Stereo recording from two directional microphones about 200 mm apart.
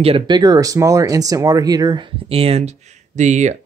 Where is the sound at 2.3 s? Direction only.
30° right (ahead or behind).